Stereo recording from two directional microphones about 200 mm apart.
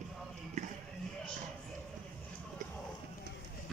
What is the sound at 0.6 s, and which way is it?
Music, 35° right (ahead or behind).